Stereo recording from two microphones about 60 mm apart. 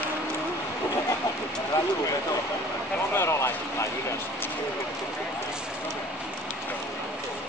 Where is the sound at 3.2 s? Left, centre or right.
Left.